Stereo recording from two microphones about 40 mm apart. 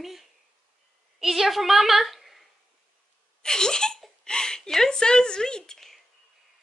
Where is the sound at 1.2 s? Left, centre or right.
Centre.